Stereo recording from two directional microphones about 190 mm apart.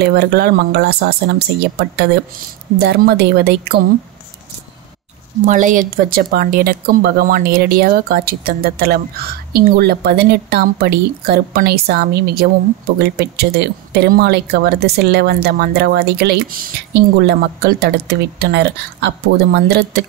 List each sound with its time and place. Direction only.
0.0 s speech: 60° right (ahead or behind)
5.4 s speech: 40° right (ahead or behind); by 19.8 s 60° right (ahead or behind)